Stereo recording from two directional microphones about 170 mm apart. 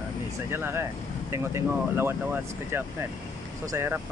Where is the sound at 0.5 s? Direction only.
15° right (ahead or behind).